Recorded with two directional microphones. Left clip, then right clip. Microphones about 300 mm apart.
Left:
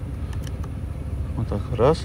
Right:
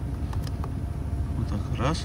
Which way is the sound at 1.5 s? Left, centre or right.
Centre.